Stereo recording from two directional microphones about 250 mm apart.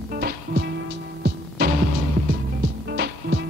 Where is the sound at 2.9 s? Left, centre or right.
Right.